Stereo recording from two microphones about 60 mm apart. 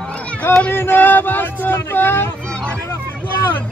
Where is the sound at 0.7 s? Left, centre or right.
Left.